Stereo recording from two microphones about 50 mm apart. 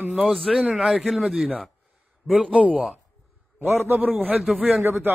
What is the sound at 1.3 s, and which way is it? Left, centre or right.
Speech, centre.